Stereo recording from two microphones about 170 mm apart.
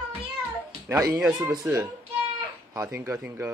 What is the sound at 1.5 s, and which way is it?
A man's voice, 10° right (ahead or behind).